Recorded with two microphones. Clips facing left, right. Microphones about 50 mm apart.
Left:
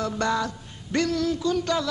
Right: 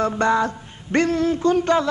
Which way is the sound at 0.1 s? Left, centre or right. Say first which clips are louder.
Right 6 dB; right.